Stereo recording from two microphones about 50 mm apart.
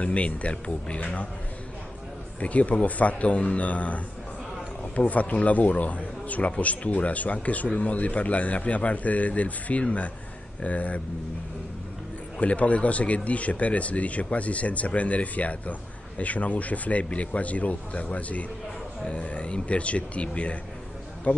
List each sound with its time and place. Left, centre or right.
0.0 s a man's voice: left
2.4 s a man's voice: left
12.4 s a man's voice: left